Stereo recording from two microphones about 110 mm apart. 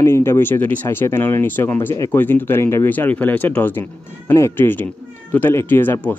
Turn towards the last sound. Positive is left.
turn(degrees=20)  # may be behind; listen again after turning